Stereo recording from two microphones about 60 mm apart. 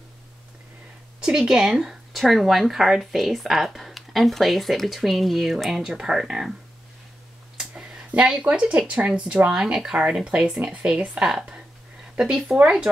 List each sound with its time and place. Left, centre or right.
1.3 s speech: centre
7.5 s speech: centre
9.5 s speech: centre
12.9 s speech: right